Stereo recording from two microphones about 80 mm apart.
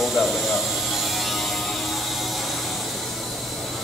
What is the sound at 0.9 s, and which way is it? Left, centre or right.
Music, centre.